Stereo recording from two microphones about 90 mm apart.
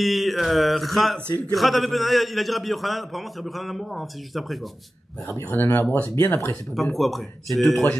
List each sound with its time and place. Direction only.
0.0 s a man's voice: centre (ahead or behind)
5.3 s speech: 30° left (ahead or behind)
6.7 s a man's voice: centre (ahead or behind)